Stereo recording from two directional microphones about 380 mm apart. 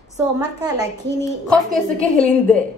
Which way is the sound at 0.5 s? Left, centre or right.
Centre.